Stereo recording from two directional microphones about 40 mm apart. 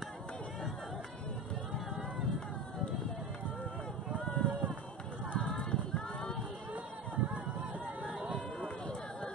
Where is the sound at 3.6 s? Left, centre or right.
Centre.